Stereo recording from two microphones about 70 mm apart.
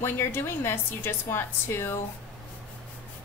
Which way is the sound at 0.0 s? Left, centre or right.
Left.